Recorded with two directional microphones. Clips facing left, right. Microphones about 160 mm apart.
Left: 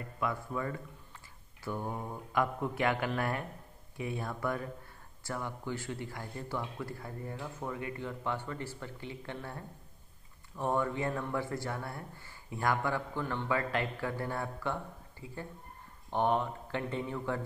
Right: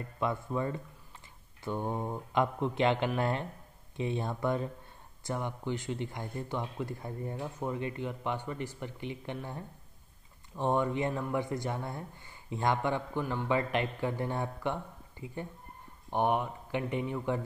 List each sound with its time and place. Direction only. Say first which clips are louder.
0.2 s speech: right 3 dB; 25° right (ahead or behind)